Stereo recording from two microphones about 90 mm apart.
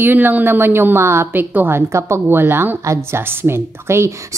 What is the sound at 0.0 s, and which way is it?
A woman's voice, 20° right (ahead or behind).